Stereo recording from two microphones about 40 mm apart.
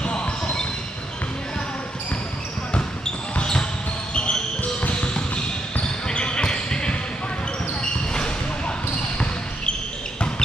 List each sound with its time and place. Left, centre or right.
0.0 s basketball bounce: left
4.1 s basketball bounce: left